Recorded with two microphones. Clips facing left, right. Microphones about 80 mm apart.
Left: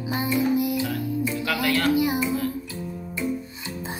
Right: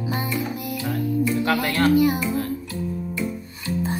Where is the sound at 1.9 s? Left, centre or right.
Centre.